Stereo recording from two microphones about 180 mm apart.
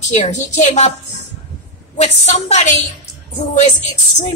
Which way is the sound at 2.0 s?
40° left (ahead or behind).